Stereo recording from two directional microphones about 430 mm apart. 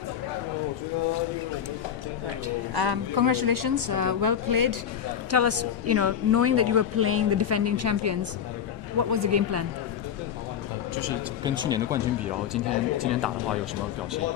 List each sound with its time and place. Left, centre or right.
2.4 s speech: right
5.3 s a woman's voice: right
11.4 s speech: centre